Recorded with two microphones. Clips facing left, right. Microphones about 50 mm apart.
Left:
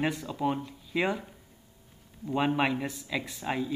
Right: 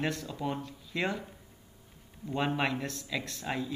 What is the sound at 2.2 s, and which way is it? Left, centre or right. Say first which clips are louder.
Speech: left 4 dB; centre.